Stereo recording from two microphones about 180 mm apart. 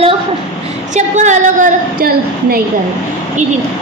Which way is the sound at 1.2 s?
45° right (ahead or behind).